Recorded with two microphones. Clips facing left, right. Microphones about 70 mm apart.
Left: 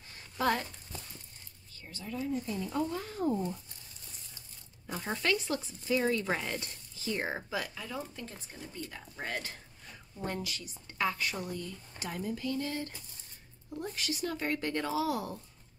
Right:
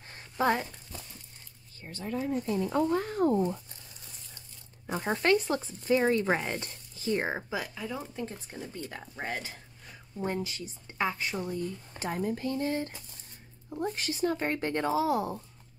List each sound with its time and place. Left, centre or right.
0.4 s speech: right
1.8 s speech: right
4.8 s speech: right
7.3 s speech: centre
8.5 s speech: right
9.1 s speech: centre